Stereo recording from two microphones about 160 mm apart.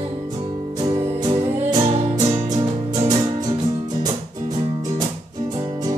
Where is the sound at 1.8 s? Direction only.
40° right (ahead or behind).